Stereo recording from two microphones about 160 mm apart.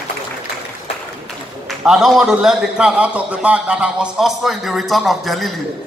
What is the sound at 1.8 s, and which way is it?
A man's voice, centre (ahead or behind).